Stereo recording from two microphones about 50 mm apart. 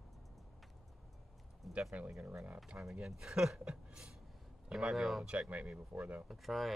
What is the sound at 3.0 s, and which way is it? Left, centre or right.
Speech, centre.